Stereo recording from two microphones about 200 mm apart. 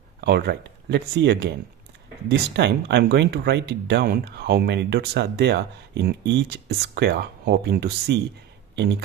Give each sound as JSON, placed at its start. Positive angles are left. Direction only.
{"t": 0.2, "sound": "speech", "side_deg": -55}